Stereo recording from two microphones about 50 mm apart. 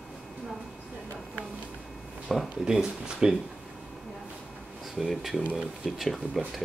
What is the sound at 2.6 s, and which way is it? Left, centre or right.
Speech, centre.